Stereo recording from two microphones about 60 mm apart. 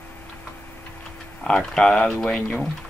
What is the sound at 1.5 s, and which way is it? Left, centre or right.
Speech, centre.